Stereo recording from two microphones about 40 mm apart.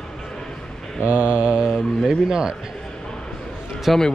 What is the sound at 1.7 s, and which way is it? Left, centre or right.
Speech, centre.